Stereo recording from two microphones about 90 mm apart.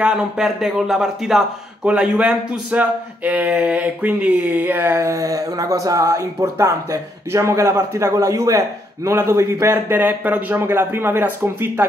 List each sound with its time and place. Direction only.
0.0 s a man's voice: 5° right (ahead or behind)
1.9 s a man's voice: 15° right (ahead or behind)